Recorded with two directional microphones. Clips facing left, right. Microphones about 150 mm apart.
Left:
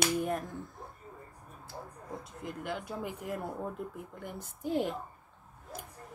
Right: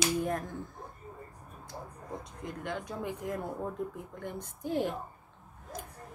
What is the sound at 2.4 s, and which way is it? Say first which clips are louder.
Speech: even; 5° left (ahead or behind).